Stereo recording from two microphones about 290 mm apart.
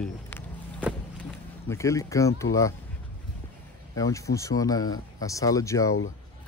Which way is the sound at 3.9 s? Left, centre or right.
Centre.